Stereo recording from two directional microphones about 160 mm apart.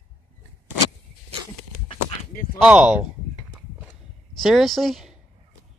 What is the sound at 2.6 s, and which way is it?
Speech, 5° right (ahead or behind).